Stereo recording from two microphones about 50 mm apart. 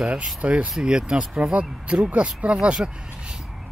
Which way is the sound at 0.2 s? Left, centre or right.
Right.